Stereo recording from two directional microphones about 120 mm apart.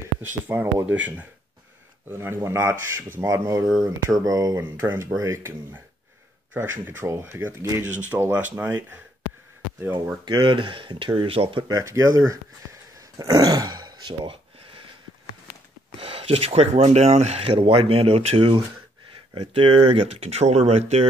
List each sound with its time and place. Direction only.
0.5 s speech: 20° right (ahead or behind)
4.6 s speech: 20° right (ahead or behind)
10.2 s speech: 40° right (ahead or behind)
11.6 s speech: 30° right (ahead or behind)
16.0 s speech: 55° right (ahead or behind)